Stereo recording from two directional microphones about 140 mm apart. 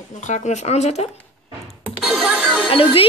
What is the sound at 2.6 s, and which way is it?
Speech, 40° left (ahead or behind).